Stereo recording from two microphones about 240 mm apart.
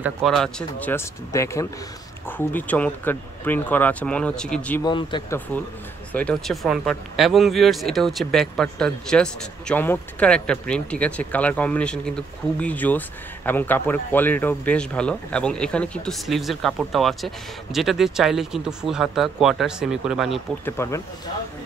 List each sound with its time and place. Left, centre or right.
0.0 s speech: centre
4.8 s speech: centre
6.1 s speech: centre
20.7 s speech: centre